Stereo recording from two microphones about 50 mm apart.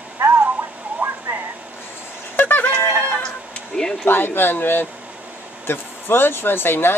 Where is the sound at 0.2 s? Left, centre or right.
Right.